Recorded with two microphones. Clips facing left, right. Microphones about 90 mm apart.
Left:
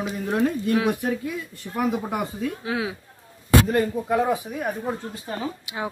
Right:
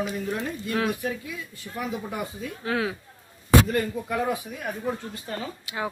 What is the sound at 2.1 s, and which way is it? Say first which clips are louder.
Speech: left 5 dB; 75° left (ahead or behind).